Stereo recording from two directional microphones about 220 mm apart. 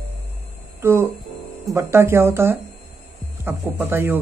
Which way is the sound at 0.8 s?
10° right (ahead or behind).